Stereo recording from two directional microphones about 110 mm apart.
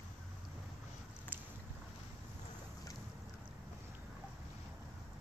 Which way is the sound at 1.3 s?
15° right (ahead or behind).